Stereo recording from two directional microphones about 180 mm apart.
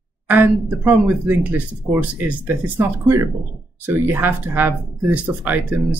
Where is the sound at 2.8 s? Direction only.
15° right (ahead or behind).